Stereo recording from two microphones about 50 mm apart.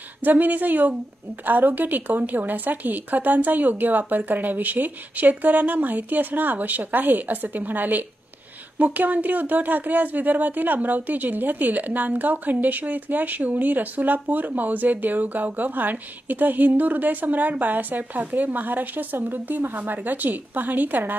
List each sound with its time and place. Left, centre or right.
0.2 s speech: right